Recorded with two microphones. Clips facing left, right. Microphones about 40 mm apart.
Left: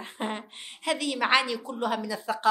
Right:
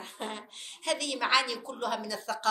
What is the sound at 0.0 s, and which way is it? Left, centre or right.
A woman's voice, left.